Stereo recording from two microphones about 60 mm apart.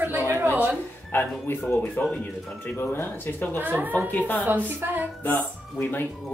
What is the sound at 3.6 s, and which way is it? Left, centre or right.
Speech, right.